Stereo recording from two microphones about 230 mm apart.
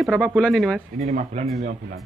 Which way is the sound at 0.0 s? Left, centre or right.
Centre.